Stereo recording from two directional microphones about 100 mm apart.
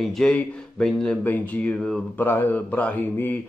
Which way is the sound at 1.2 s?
20° left (ahead or behind).